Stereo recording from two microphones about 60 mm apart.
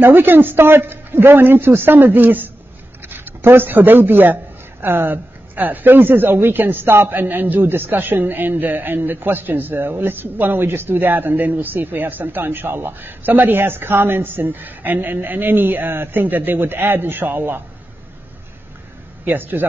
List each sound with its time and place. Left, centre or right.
0.0 s a woman's voice: right
19.2 s a woman's voice: right